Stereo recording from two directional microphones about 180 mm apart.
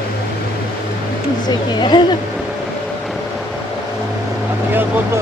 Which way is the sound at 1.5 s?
25° left (ahead or behind).